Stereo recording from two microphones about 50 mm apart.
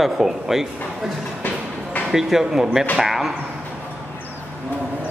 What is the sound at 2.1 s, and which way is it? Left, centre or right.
Speech, centre.